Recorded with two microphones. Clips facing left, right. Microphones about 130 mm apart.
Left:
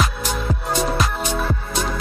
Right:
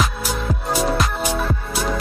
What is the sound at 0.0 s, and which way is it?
Music, 5° right (ahead or behind).